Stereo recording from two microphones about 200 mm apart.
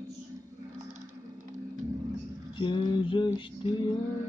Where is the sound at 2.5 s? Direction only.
25° left (ahead or behind).